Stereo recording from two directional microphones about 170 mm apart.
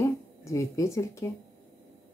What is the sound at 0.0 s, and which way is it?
Speech, 20° left (ahead or behind).